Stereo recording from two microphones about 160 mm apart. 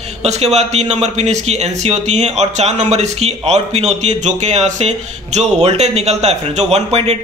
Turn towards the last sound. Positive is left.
turn(degrees=-40)  # may be behind; listen again after turning